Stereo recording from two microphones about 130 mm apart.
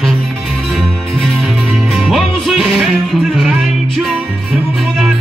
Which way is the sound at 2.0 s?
Centre (ahead or behind).